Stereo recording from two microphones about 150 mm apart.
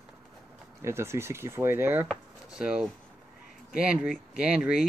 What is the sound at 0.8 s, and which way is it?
Speech, 15° right (ahead or behind).